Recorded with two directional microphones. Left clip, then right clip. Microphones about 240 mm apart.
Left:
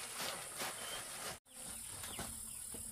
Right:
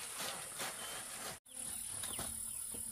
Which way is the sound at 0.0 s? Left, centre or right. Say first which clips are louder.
Even; centre.